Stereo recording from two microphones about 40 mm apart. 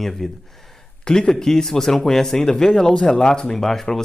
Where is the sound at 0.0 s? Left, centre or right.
Centre.